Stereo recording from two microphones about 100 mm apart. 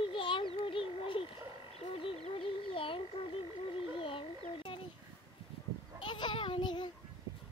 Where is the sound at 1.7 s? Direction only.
80° left; by 4.8 s 65° left (ahead or behind).